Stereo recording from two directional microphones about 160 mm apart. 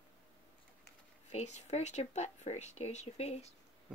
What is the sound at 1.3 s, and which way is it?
Speech, 45° left (ahead or behind).